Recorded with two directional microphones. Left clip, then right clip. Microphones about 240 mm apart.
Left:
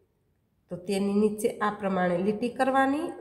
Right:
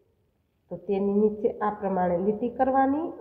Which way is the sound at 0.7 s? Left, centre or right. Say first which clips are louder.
Right 3 dB; centre.